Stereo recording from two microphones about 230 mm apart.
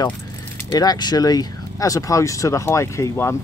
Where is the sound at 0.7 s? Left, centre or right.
Centre.